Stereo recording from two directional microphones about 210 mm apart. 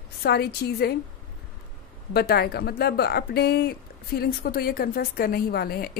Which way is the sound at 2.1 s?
50° left (ahead or behind).